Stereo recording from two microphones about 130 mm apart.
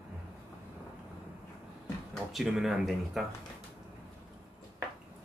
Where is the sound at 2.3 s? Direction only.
Centre (ahead or behind).